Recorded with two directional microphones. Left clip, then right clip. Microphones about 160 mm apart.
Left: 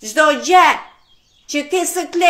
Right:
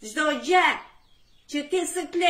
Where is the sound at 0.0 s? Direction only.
25° right (ahead or behind).